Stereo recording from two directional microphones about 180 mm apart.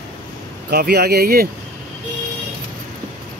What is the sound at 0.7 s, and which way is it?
Speech, 60° right (ahead or behind).